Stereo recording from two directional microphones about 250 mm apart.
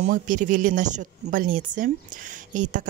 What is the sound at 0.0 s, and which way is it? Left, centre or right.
Speech, right.